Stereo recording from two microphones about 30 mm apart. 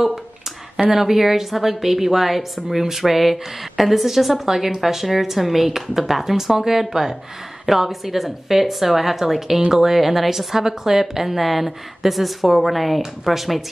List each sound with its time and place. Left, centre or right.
0.8 s a woman's voice: centre